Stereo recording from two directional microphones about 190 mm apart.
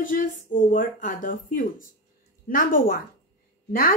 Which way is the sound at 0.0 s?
45° left (ahead or behind).